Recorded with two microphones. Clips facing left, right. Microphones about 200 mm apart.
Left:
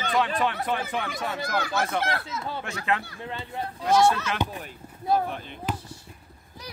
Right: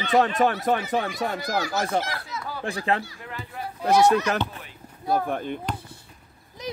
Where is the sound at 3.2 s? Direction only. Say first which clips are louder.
Left 3 dB; 25° left (ahead or behind).